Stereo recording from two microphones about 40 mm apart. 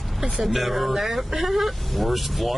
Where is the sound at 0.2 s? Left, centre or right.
Centre.